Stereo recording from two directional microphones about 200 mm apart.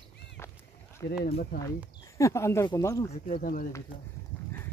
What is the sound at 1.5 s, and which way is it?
Speech, 50° left (ahead or behind).